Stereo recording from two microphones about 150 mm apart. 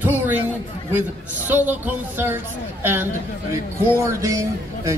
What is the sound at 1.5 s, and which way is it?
Speech, 15° right (ahead or behind).